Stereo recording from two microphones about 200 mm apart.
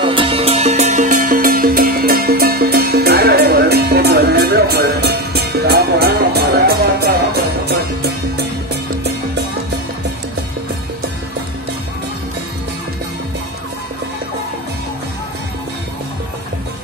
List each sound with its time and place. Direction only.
0.0 s music: 25° right (ahead or behind); by 8.1 s 50° right (ahead or behind)